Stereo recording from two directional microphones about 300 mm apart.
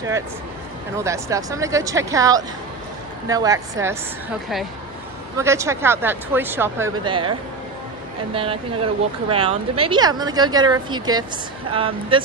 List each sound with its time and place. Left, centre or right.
0.9 s speech: centre
5.4 s speech: centre
8.4 s speech: centre